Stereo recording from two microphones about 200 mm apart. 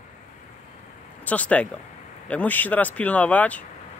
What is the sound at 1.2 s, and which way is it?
Speech, 5° left (ahead or behind).